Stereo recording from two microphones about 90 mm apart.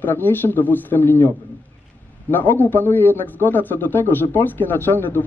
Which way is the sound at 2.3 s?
20° left (ahead or behind).